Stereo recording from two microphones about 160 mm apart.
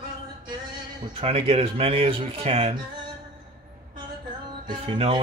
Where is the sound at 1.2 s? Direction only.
35° right (ahead or behind).